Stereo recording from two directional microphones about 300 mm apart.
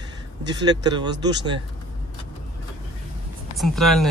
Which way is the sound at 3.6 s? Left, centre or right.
Centre.